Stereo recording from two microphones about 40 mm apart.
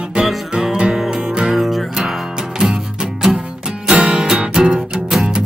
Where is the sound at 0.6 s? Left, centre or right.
Right.